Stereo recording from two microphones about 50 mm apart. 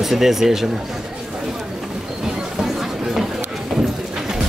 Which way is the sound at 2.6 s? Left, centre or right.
Centre.